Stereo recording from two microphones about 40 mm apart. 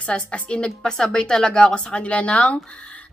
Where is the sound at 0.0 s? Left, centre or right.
Left.